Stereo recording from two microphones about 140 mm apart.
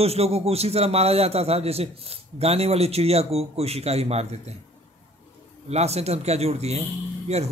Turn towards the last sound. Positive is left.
turn(degrees=-50)  # may be behind; listen again after turning